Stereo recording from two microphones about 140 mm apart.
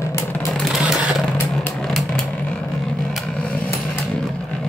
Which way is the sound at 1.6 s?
10° left (ahead or behind).